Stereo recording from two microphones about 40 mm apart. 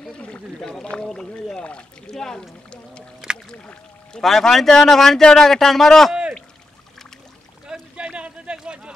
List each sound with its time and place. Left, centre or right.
0.6 s speech: centre
1.6 s speech: left
2.1 s speech: centre
4.2 s speech: centre
7.9 s a sound: right